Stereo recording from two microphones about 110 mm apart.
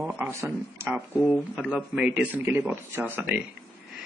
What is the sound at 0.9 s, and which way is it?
A man's voice, 10° right (ahead or behind).